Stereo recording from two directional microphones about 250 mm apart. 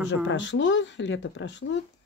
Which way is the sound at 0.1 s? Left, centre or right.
Left.